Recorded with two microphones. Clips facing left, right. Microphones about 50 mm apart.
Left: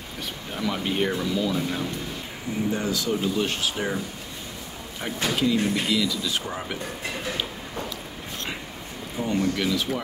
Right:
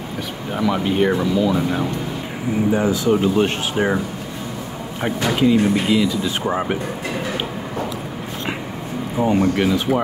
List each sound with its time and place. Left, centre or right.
0.8 s speech: centre
1.1 s speech: right
3.1 s speech: right
5.0 s speech: right
9.3 s speech: right